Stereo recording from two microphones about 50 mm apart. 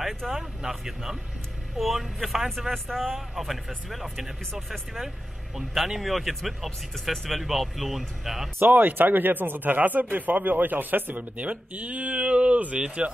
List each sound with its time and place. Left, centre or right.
0.3 s speech: centre
8.5 s speech: right